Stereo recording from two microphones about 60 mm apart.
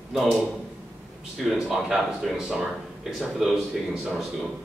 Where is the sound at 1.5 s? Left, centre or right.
Centre.